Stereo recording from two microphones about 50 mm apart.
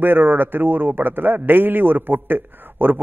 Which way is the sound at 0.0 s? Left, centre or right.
Right.